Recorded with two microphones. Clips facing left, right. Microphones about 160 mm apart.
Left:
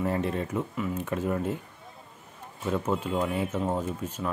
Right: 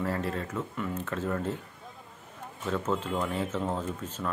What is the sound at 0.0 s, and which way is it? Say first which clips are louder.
Speech: left 3 dB; 20° left (ahead or behind).